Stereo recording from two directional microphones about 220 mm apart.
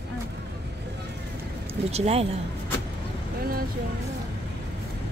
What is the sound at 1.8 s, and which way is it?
Speech, 30° right (ahead or behind).